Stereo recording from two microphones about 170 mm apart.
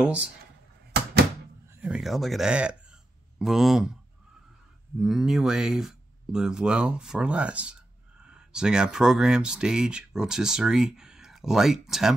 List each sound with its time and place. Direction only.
0.0 s speech: 10° right (ahead or behind)
0.9 s door: 75° right (ahead or behind)
1.7 s speech: 10° right (ahead or behind)
4.9 s speech: 5° right (ahead or behind)